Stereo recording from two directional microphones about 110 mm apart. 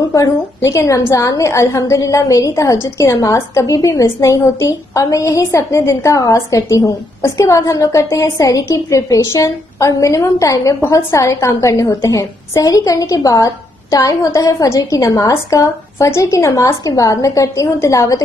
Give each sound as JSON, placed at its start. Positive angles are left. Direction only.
{"t": 0.1, "sound": "a woman's voice", "side_deg": 30}